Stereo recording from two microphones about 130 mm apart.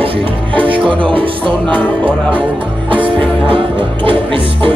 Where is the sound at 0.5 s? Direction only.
40° right (ahead or behind).